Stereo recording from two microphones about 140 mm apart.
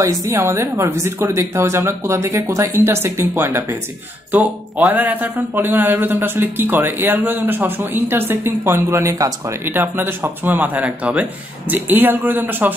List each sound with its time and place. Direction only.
0.0 s speech: 20° right (ahead or behind)